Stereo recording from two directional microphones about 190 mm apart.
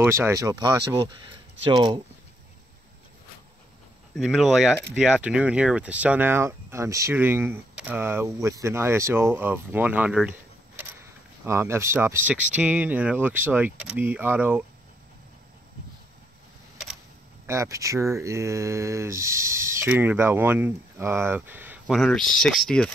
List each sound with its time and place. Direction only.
0.0 s speech: 15° right (ahead or behind)
4.2 s speech: centre (ahead or behind)
17.5 s speech: 15° right (ahead or behind); by 22.8 s centre (ahead or behind)